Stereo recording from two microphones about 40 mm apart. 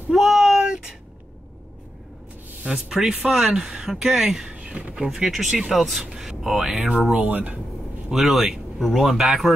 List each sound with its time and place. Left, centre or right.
0.1 s a sound: centre
2.6 s speech: centre
5.3 s speech: centre
6.1 s a sound: centre
7.2 s speech: right
8.1 s speech: centre